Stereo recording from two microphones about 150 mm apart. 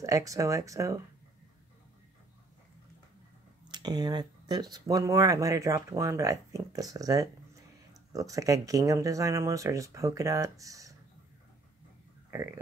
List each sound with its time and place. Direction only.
0.0 s speech: 20° right (ahead or behind)
3.7 s speech: 30° right (ahead or behind)